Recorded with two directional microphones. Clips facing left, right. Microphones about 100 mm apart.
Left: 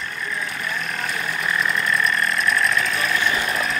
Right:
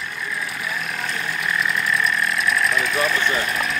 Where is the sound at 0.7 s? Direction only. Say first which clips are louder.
Even; centre (ahead or behind).